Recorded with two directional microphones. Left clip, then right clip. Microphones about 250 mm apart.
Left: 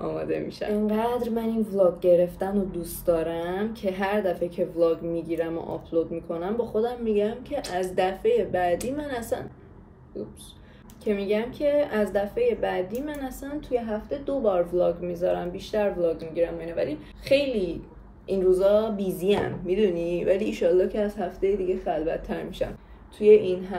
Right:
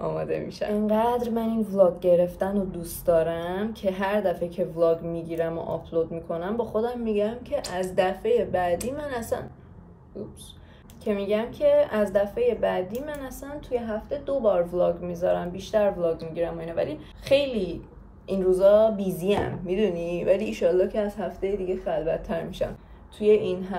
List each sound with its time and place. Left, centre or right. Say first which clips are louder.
0.0 s a woman's voice: even; centre
11.1 s a woman's voice: even; centre